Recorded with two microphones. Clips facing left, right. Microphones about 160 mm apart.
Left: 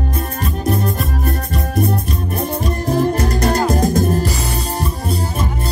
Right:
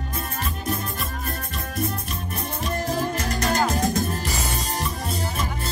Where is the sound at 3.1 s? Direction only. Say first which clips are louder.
Left 7 dB; 35° left (ahead or behind).